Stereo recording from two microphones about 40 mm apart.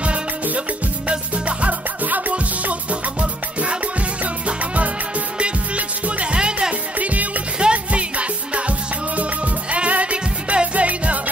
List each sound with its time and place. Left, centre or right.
1.6 s music: right
2.9 s music: right
7.0 s music: right
7.5 s music: right